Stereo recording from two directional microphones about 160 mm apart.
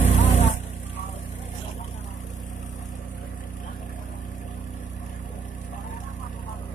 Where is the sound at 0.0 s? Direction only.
45° left (ahead or behind).